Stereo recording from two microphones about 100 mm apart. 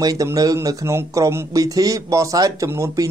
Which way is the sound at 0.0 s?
35° right (ahead or behind).